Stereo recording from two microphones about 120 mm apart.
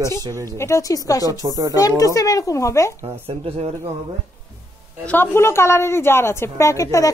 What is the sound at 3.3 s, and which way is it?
Speech, 55° right (ahead or behind).